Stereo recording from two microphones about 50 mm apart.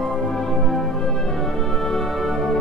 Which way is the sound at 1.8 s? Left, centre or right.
Centre.